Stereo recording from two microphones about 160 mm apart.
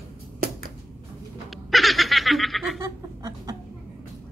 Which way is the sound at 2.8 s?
20° right (ahead or behind).